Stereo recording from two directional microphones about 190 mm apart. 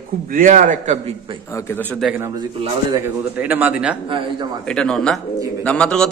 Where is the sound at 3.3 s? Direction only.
10° right (ahead or behind).